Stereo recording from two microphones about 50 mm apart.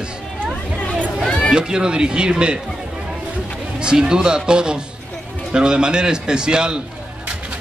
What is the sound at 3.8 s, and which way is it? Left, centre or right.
A man's voice, centre.